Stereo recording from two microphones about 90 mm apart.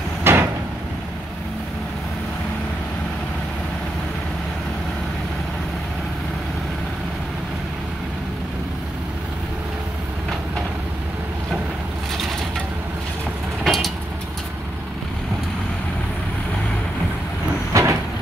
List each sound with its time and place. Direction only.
0.2 s a sound: 25° right (ahead or behind)
13.7 s vehicle: centre (ahead or behind)
17.7 s vehicle: 35° right (ahead or behind)